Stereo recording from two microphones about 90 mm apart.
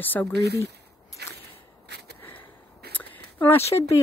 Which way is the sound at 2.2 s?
20° left (ahead or behind).